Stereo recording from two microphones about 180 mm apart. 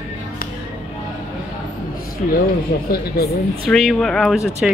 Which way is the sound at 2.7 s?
65° left (ahead or behind).